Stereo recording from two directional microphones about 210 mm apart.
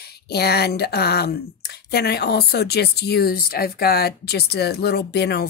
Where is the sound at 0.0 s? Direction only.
50° left (ahead or behind).